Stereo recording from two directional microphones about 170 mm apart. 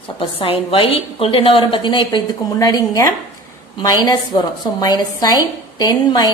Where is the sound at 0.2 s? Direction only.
30° left (ahead or behind).